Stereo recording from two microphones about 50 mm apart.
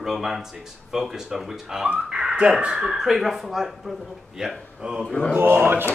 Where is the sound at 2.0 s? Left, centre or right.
Centre.